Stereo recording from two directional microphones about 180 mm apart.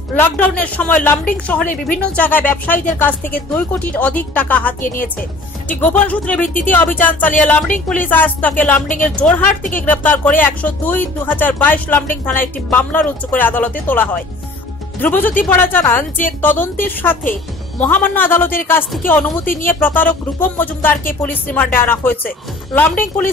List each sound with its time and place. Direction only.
0.1 s speech: 10° left (ahead or behind)
4.8 s speech: 50° left (ahead or behind)
5.7 s speech: 10° left (ahead or behind)
6.4 s speech: 45° left (ahead or behind)
6.7 s speech: 10° left (ahead or behind)
9.6 s speech: 45° left (ahead or behind)
9.8 s speech: 10° left (ahead or behind)